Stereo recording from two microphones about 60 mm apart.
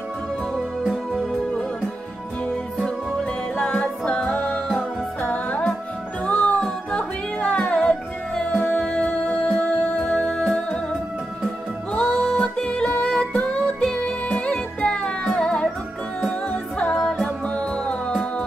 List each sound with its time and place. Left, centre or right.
0.8 s music: centre
3.5 s music: centre
9.3 s music: left
10.0 s music: centre
11.9 s music: centre
16.9 s music: centre
17.6 s music: centre